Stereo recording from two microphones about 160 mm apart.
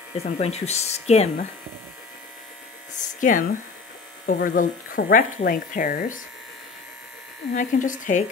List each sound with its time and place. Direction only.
0.2 s speech: 40° left (ahead or behind)
3.2 s speech: 55° left (ahead or behind)
7.5 s speech: 55° left (ahead or behind)